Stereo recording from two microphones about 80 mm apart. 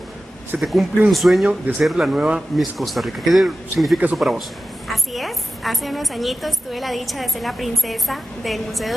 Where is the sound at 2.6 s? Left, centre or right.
Centre.